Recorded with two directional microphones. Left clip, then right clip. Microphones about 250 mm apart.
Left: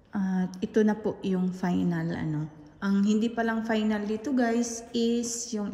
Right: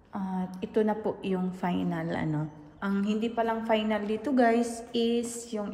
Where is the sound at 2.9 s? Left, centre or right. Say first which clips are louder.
Left 3 dB; left.